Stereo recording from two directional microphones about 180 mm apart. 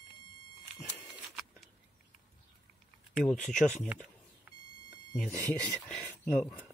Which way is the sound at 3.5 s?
40° left (ahead or behind).